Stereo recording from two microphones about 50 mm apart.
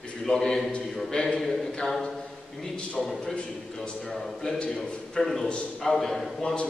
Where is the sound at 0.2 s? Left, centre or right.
Centre.